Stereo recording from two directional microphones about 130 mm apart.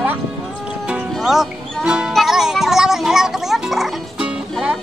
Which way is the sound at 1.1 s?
Centre (ahead or behind).